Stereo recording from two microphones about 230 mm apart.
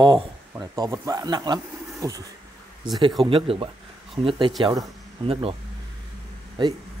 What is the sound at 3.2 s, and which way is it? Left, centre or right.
Speech, right.